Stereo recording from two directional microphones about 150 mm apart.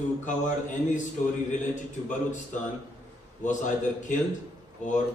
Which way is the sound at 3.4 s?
55° left (ahead or behind).